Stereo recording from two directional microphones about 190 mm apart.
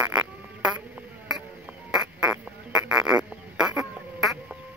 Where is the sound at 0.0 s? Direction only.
5° right (ahead or behind).